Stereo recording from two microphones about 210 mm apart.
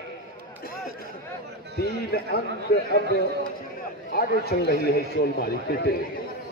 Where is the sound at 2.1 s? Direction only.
50° left (ahead or behind).